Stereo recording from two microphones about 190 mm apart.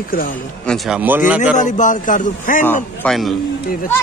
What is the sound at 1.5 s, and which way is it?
Speech, 40° left (ahead or behind).